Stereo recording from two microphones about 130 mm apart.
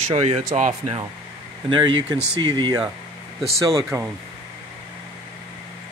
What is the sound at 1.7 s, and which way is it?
Speech, 40° right (ahead or behind).